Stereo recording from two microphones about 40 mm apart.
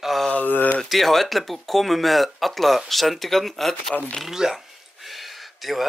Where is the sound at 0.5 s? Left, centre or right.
Left.